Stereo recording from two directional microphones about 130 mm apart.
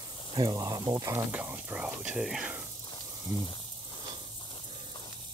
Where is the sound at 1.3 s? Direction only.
15° right (ahead or behind).